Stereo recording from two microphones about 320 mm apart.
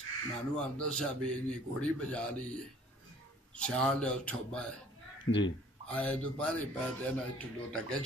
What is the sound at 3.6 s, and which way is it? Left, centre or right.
Speech, centre.